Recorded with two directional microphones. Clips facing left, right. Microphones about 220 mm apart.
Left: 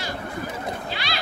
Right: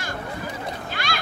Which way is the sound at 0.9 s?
50° right (ahead or behind).